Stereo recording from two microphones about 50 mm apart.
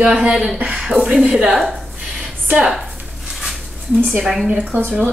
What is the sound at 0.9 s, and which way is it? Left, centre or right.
Speech, right.